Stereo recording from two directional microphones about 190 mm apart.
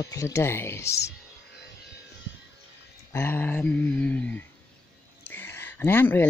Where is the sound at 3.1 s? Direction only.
10° left (ahead or behind).